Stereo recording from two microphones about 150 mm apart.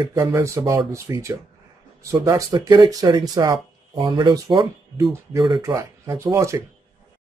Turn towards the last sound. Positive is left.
turn(degrees=-20)  # may be behind; listen again after turning